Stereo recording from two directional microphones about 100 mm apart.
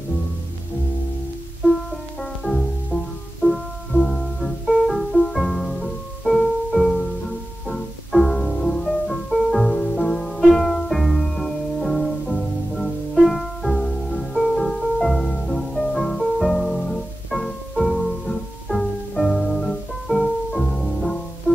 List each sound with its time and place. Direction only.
2.4 s music: 5° left (ahead or behind)